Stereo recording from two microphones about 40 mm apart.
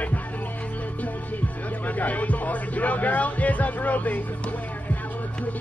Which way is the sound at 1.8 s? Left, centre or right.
Left.